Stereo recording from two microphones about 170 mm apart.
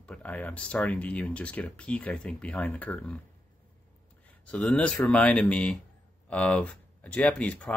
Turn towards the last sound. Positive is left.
turn(degrees=10)  # may be behind; listen again after turning